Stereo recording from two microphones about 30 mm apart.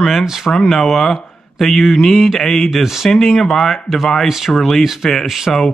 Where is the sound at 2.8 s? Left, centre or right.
Centre.